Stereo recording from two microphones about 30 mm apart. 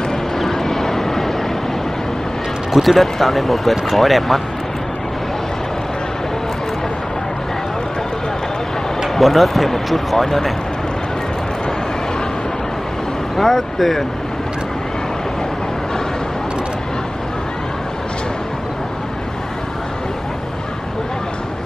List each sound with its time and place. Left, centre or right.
0.4 s vehicle: centre
2.7 s speech: centre
9.2 s speech: centre
13.4 s speech: centre